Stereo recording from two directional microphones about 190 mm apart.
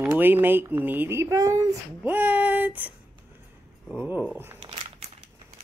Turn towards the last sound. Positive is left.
turn(degrees=-30)  # may be behind; listen again after turning